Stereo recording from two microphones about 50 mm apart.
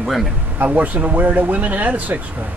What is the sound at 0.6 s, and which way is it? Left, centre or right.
Speech, right.